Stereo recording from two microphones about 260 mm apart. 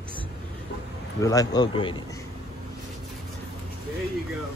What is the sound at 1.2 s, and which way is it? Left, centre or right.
Speech, centre.